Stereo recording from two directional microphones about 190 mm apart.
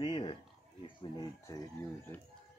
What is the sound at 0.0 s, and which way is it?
Dog, 25° left (ahead or behind).